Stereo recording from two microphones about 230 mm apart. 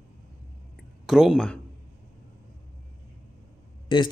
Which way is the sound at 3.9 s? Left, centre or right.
Left.